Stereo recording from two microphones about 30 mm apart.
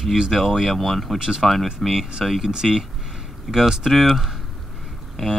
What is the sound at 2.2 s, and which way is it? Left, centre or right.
Speech, centre.